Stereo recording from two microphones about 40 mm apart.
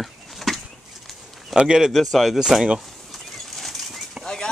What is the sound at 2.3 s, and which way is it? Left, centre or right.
Speech, centre.